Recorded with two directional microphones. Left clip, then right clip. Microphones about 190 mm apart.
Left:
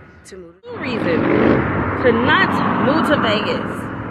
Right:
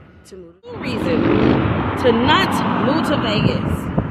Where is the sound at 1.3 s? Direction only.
55° right (ahead or behind).